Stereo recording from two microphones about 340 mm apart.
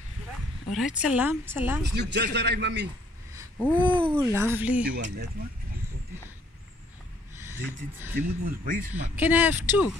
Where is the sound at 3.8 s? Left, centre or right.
Centre.